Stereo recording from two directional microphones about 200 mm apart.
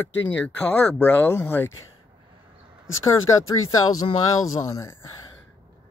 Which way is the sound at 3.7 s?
20° left (ahead or behind).